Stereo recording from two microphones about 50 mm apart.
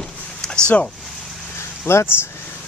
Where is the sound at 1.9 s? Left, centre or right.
Left.